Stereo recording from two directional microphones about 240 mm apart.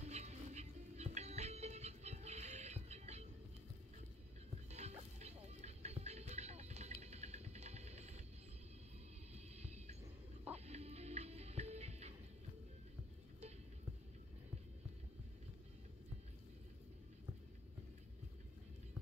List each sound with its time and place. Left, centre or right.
0.0 s music: right
4.6 s music: right
9.3 s a sound: right
10.5 s music: right